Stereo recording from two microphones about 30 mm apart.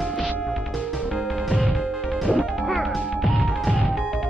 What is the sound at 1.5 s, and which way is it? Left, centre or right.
Music, centre.